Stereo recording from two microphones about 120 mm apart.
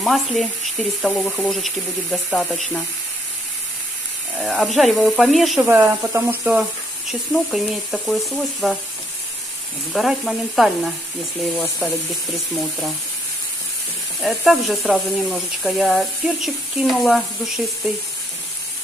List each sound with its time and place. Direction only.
0.0 s speech: centre (ahead or behind)
4.4 s speech: centre (ahead or behind)
5.7 s speech: 20° right (ahead or behind)
7.1 s speech: centre (ahead or behind)
9.9 s speech: centre (ahead or behind)
14.2 s speech: centre (ahead or behind)